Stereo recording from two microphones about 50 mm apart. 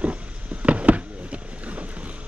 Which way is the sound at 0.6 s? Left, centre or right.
Right.